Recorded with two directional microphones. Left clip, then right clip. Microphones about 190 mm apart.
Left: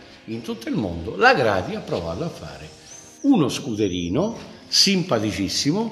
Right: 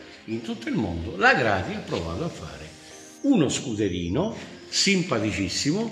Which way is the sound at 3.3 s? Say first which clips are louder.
Left 2 dB; 40° left (ahead or behind).